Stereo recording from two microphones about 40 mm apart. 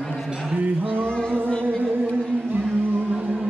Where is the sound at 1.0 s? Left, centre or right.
Left.